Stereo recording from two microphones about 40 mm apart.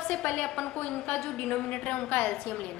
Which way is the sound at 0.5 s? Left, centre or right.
Centre.